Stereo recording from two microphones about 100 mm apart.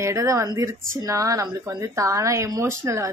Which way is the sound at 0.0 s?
30° right (ahead or behind).